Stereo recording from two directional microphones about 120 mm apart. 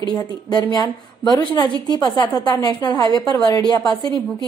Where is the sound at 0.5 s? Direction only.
35° left (ahead or behind).